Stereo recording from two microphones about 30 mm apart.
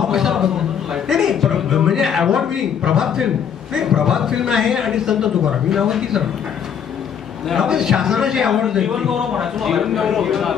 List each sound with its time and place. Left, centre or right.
0.0 s a sound: centre
3.0 s a man's voice: centre
7.6 s a man's voice: centre
9.6 s a man's voice: centre